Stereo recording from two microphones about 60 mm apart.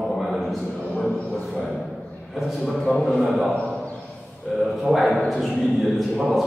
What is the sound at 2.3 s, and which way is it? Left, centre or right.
A man's voice, centre.